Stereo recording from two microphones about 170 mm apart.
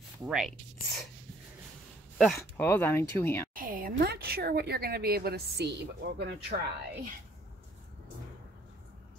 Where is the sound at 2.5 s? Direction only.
10° left (ahead or behind).